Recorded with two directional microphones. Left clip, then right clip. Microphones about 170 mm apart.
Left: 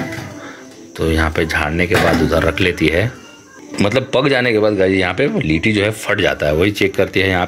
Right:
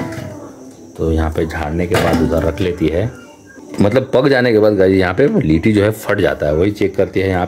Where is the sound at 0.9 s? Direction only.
5° right (ahead or behind).